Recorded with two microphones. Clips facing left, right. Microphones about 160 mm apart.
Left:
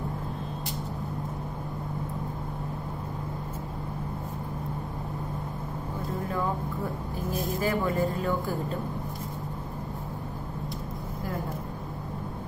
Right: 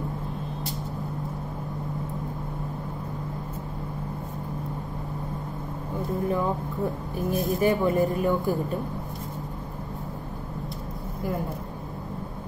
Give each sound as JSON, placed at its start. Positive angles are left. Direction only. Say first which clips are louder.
{"t": 7.2, "sound": "speech", "louder": "right 6 dB", "side_deg": -20}